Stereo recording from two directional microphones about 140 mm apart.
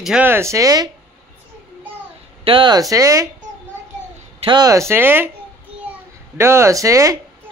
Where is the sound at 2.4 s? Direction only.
35° right (ahead or behind).